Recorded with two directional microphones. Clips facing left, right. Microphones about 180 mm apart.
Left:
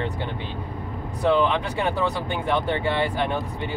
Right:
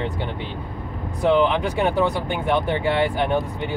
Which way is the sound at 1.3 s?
15° right (ahead or behind).